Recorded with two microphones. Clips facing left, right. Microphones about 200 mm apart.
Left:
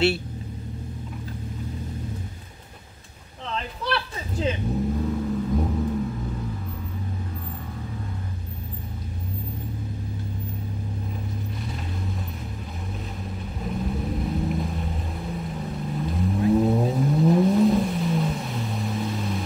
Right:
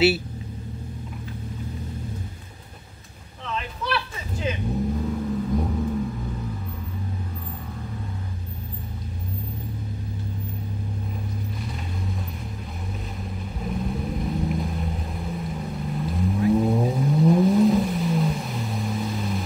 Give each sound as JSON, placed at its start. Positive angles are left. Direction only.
{"t": 3.4, "sound": "a sound", "side_deg": 30}
{"t": 4.9, "sound": "vehicle", "side_deg": 0}
{"t": 13.6, "sound": "vehicle", "side_deg": 0}